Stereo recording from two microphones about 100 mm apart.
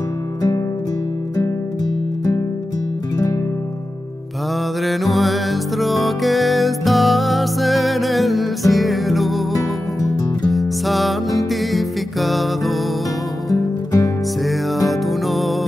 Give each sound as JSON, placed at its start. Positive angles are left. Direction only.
{"t": 4.8, "sound": "music", "side_deg": 0}
{"t": 13.5, "sound": "music", "side_deg": 35}
{"t": 14.4, "sound": "music", "side_deg": 0}